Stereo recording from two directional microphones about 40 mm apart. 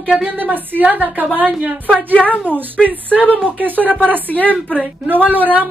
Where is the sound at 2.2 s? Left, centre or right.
Centre.